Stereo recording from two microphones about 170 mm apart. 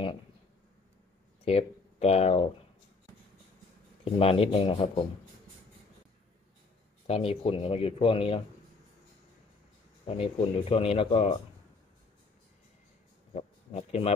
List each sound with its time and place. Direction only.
1.4 s speech: 35° left (ahead or behind)
4.0 s speech: 35° left (ahead or behind)
7.1 s speech: 35° left (ahead or behind)
10.0 s speech: 35° left (ahead or behind)
13.3 s speech: 35° left (ahead or behind)